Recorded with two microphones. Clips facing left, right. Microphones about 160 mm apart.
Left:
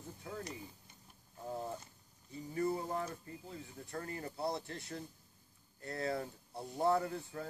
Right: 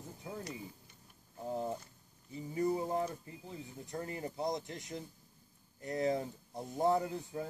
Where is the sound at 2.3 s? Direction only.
20° right (ahead or behind).